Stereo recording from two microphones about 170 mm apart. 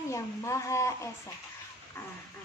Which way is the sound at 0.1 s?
15° left (ahead or behind).